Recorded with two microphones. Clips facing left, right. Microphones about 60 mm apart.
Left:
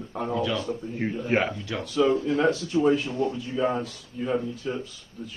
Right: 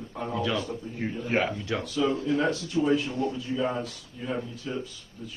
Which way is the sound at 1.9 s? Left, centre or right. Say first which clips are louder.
Left 5 dB; left.